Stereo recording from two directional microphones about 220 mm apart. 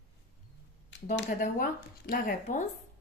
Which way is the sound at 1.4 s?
40° left (ahead or behind).